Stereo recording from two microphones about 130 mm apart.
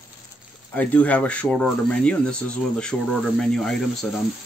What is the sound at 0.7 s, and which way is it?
Speech, 10° left (ahead or behind).